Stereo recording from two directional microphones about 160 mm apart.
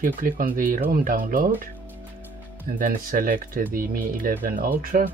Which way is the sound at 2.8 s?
60° right (ahead or behind).